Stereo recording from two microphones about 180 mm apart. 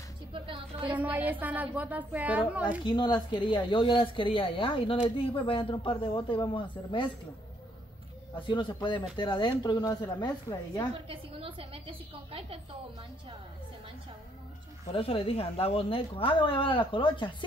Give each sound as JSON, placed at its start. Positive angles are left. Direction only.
{"t": 0.3, "sound": "a sound", "side_deg": -30}
{"t": 0.9, "sound": "speech", "side_deg": -10}
{"t": 2.8, "sound": "speech", "side_deg": 25}
{"t": 8.4, "sound": "speech", "side_deg": 25}
{"t": 11.1, "sound": "a woman's voice", "side_deg": -30}
{"t": 15.0, "sound": "speech", "side_deg": 30}